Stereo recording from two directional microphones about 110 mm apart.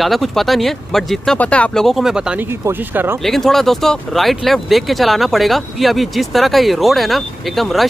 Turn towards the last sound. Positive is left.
turn(degrees=0)  # may be behind; listen again after turning